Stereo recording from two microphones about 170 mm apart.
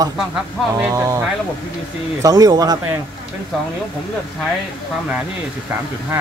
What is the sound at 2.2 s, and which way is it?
Speech, 20° right (ahead or behind).